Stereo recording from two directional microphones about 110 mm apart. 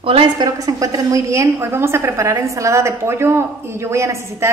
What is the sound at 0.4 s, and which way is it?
A woman's voice, 35° right (ahead or behind).